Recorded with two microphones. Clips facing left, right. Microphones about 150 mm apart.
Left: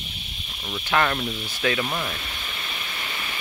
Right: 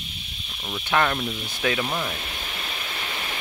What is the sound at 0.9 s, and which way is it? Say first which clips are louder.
Speech: even; 5° right (ahead or behind).